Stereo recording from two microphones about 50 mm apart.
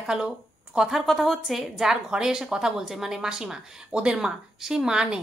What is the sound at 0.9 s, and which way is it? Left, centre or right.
A woman's voice, centre.